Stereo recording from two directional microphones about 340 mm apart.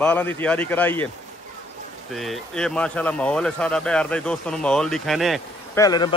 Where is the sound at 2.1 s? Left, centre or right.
Centre.